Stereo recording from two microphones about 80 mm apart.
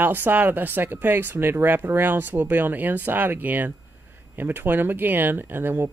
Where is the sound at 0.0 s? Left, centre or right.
Right.